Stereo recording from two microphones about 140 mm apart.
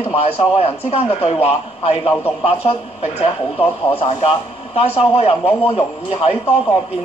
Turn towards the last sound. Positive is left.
turn(degrees=45)  # may be behind; listen again after turning